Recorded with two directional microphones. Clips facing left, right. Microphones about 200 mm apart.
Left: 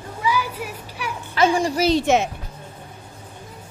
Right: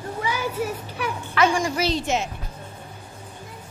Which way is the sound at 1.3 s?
35° left (ahead or behind).